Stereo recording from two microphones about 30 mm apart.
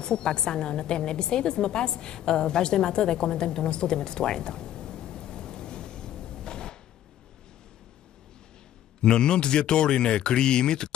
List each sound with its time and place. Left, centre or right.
0.0 s a woman's voice: left
9.0 s speech: left